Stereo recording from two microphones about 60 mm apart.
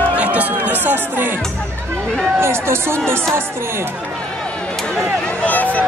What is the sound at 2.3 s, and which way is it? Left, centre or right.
Speech, right.